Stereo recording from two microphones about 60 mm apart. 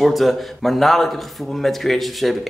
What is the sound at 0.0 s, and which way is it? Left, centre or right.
Speech, centre.